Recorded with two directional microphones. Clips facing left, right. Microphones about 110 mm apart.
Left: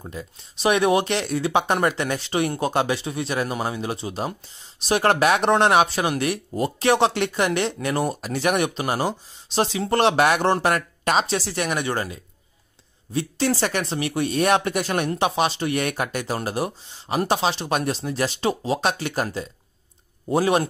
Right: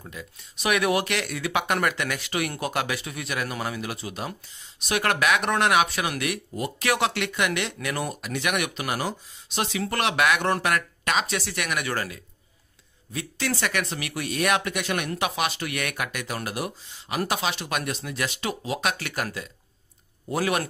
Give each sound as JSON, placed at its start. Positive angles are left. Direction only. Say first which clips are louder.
{"t": 0.0, "sound": "a man's voice", "louder": "left 5 dB", "side_deg": 30}